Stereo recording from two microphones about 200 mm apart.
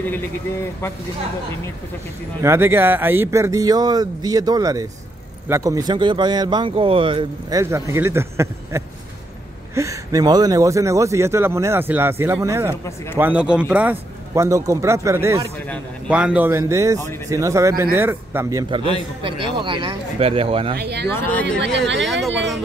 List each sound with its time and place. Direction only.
2.4 s speech: 10° right (ahead or behind); by 20.7 s 30° right (ahead or behind)
20.8 s speech: 55° right (ahead or behind)
22.0 s speech: centre (ahead or behind)